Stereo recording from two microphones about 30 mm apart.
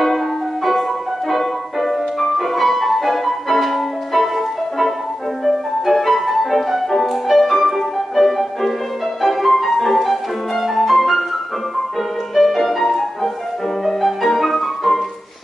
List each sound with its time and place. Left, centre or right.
1.3 s music: centre
12.4 s music: centre